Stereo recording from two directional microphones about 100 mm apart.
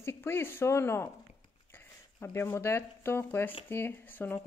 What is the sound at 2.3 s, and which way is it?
A woman's voice, 25° left (ahead or behind).